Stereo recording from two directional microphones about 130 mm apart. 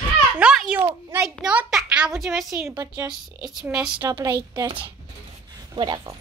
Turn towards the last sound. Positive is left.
turn(degrees=-30)  # may be behind; listen again after turning